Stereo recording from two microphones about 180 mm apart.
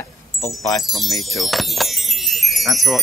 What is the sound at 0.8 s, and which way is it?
Speech, centre (ahead or behind).